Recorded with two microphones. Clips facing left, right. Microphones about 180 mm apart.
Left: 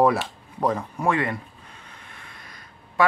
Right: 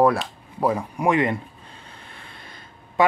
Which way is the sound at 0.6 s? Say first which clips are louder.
Right 2 dB; 10° right (ahead or behind).